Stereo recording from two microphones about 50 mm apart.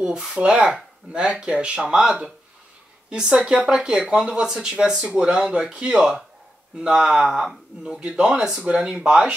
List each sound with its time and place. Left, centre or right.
0.0 s speech: centre